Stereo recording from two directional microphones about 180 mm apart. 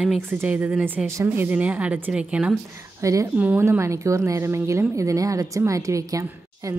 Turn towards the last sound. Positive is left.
turn(degrees=-15)  # may be behind; listen again after turning